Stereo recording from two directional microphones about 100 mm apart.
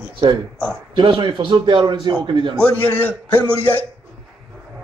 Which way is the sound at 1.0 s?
60° right (ahead or behind).